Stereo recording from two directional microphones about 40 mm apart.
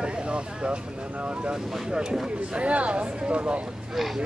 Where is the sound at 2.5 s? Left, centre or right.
Right.